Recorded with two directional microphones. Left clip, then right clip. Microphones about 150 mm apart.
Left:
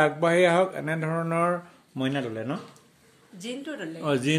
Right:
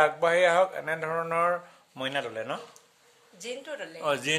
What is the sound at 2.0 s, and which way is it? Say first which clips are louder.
A woman's voice: left 1 dB; 15° right (ahead or behind).